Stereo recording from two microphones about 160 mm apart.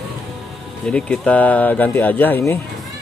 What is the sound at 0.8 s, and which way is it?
Speech, 5° left (ahead or behind).